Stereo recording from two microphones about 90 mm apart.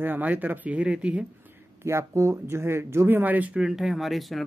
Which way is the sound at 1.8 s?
30° right (ahead or behind).